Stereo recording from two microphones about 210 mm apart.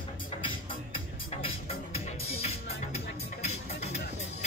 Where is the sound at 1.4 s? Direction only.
30° left (ahead or behind).